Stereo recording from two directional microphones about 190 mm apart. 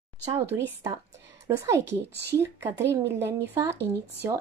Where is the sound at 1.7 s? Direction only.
15° right (ahead or behind).